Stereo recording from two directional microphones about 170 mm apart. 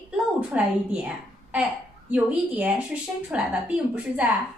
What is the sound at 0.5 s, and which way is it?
A woman's voice, 10° right (ahead or behind).